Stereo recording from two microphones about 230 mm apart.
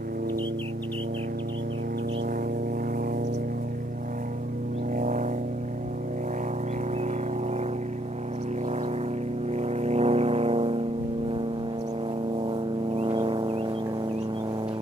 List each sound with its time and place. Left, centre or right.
4.9 s music: right
9.5 s vehicle: right
12.4 s vehicle: right